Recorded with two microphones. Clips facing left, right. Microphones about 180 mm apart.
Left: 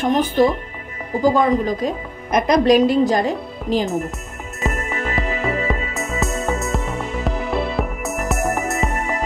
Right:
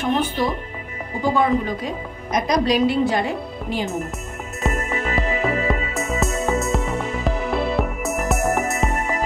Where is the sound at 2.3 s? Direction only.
55° left (ahead or behind); by 3.8 s 40° left (ahead or behind).